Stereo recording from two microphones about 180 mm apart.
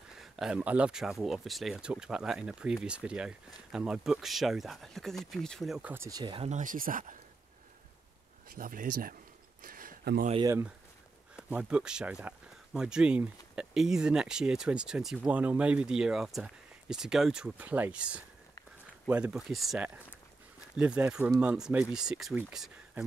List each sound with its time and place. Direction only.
0.2 s speech: 5° right (ahead or behind)
6.0 s speech: 25° right (ahead or behind)
6.5 s speech: 45° right (ahead or behind)
8.5 s speech: 50° right (ahead or behind)
9.6 s a sound: 50° right (ahead or behind)
10.4 s speech: 15° right (ahead or behind)